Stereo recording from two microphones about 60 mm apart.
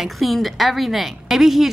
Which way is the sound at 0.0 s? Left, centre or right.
Centre.